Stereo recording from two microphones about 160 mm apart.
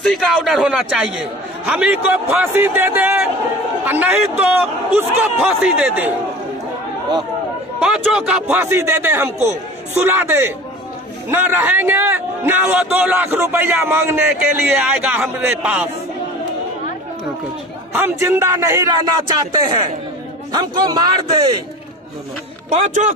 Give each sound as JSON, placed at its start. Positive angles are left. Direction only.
{"t": 0.0, "sound": "a man's voice", "side_deg": 0}
{"t": 7.8, "sound": "a man's voice", "side_deg": -5}
{"t": 17.9, "sound": "a man's voice", "side_deg": -15}
{"t": 20.5, "sound": "a man's voice", "side_deg": -25}
{"t": 22.7, "sound": "speech", "side_deg": -45}